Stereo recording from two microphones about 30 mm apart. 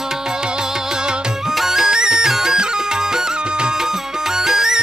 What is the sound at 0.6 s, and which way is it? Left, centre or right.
Music, right.